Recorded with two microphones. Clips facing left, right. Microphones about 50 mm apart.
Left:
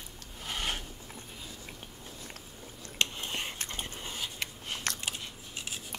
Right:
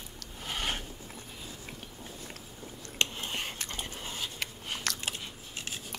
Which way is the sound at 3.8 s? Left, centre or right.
Right.